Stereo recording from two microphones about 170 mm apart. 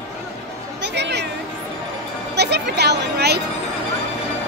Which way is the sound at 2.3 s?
80° right.